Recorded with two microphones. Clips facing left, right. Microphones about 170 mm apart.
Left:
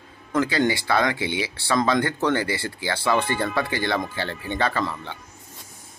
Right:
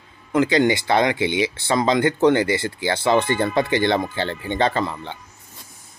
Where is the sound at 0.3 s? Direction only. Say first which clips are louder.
Right 4 dB; 20° right (ahead or behind).